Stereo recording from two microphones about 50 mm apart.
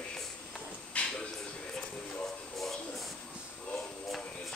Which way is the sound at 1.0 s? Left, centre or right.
Left.